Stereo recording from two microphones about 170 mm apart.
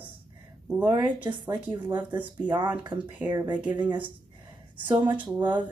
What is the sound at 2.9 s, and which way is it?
Speech, 15° right (ahead or behind).